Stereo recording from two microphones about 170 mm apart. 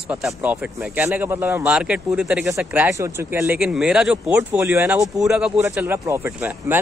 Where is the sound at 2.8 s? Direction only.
15° right (ahead or behind).